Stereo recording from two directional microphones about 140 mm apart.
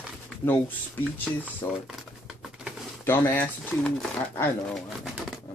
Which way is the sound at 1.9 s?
5° right (ahead or behind).